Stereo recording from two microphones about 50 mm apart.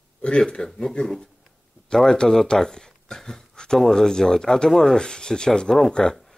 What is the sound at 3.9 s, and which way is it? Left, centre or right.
Speech, centre.